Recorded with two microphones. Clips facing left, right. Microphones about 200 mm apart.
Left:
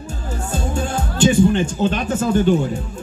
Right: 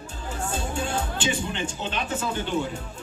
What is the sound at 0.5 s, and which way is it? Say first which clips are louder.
Music: left 6 dB; 45° left (ahead or behind).